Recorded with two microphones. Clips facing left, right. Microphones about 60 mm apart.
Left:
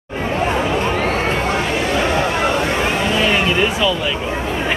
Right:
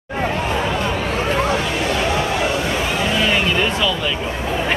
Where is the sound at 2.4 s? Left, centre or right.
Left.